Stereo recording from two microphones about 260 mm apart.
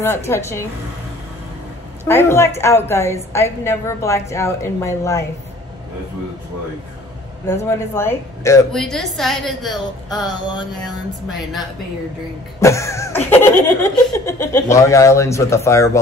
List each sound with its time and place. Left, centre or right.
0.0 s a woman's voice: centre
2.0 s a woman's voice: centre
7.4 s a woman's voice: centre
10.0 s a woman's voice: centre
10.8 s a woman's voice: centre
12.5 s a woman's voice: centre